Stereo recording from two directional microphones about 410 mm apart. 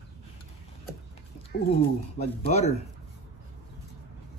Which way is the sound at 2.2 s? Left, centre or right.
Centre.